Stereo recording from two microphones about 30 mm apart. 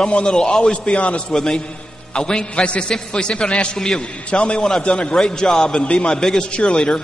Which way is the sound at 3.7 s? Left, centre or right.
Left.